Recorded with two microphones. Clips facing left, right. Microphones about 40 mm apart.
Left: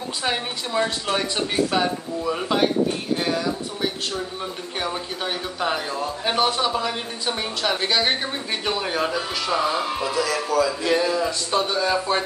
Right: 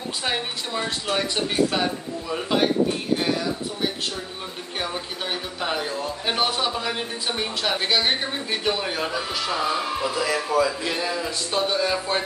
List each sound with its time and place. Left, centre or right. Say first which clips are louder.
0.2 s a woman's voice: left 2 dB; centre
4.7 s a woman's voice: left 1 dB; centre
10.2 s speech: right 2 dB; right
10.9 s a woman's voice: left 5 dB; centre